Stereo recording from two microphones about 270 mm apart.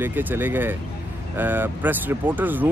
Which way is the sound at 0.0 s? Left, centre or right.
Centre.